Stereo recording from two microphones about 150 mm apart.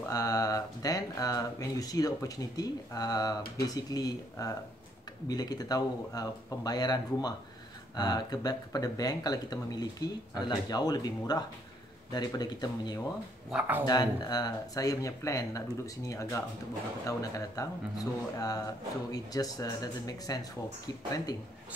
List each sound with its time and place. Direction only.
0.1 s speech: 25° left (ahead or behind)
13.5 s speech: 10° right (ahead or behind)
13.8 s speech: 25° left (ahead or behind)
17.6 s speech: 25° left (ahead or behind)